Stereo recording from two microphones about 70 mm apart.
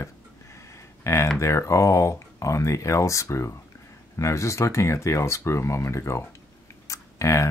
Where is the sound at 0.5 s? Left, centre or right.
Left.